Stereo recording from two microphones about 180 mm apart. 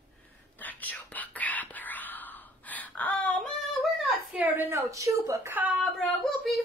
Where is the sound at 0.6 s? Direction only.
10° left (ahead or behind).